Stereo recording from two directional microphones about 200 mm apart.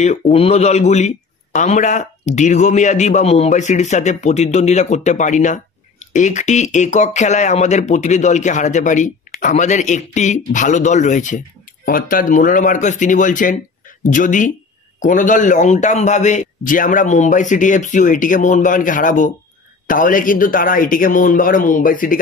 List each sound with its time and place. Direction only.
0.0 s speech: 35° left (ahead or behind)